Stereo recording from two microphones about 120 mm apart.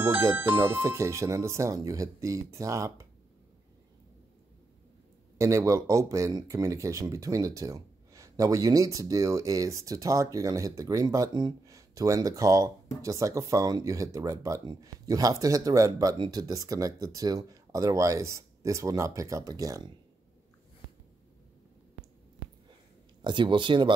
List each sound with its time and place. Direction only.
0.0 s speech: 20° right (ahead or behind)
5.4 s speech: 25° right (ahead or behind)
23.2 s speech: 40° right (ahead or behind)